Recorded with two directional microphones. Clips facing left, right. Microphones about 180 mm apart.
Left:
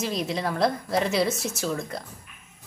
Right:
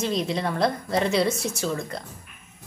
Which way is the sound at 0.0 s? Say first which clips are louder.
Right 2 dB; centre (ahead or behind).